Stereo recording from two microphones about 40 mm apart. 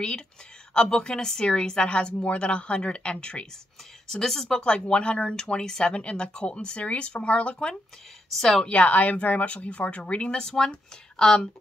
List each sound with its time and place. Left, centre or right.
0.7 s speech: left
4.1 s speech: centre
4.6 s speech: left
8.4 s speech: centre
8.6 s speech: left
10.3 s speech: centre